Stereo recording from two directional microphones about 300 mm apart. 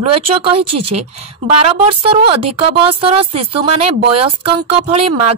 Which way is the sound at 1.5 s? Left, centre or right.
Centre.